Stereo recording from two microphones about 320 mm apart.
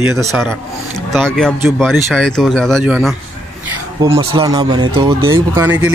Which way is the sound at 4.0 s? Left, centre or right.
Centre.